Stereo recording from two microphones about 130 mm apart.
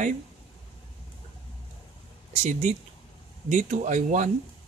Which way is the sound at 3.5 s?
70° right (ahead or behind).